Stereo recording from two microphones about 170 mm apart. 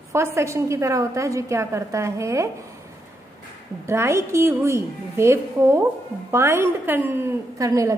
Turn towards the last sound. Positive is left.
turn(degrees=-20)  # may be behind; listen again after turning